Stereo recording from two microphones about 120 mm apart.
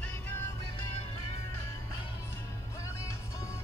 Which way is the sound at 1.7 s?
20° left (ahead or behind).